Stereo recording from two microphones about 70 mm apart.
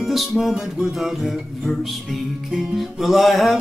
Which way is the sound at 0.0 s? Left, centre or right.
Centre.